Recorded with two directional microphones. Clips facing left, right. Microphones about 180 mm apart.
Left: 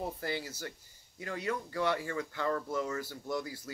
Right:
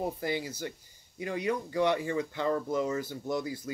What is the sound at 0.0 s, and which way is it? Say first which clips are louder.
Speech: right 4 dB; 15° right (ahead or behind).